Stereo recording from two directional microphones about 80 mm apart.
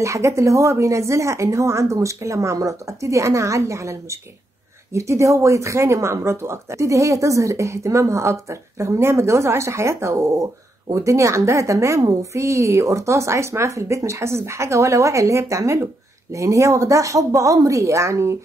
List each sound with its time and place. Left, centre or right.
0.0 s speech: right